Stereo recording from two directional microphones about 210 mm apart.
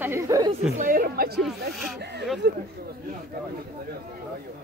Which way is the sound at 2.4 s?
50° right (ahead or behind).